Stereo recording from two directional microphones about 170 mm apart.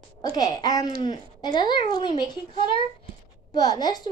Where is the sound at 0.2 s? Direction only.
25° left (ahead or behind).